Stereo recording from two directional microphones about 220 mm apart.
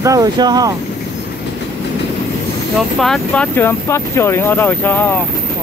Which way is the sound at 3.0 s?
5° left (ahead or behind).